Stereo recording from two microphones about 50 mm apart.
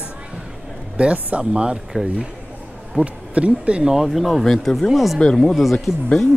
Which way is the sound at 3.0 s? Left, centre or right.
Right.